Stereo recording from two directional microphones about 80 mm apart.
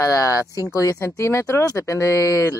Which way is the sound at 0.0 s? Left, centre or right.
Left.